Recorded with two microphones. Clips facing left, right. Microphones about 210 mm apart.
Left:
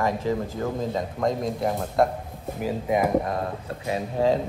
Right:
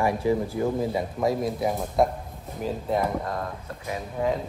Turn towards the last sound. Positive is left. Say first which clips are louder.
# left 4 dB
turn(degrees=25)  # may be behind; listen again after turning